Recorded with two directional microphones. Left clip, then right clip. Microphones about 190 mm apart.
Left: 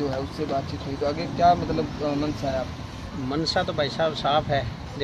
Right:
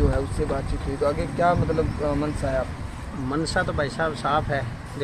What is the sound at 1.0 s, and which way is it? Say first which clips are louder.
Speech: left 1 dB; 35° right (ahead or behind).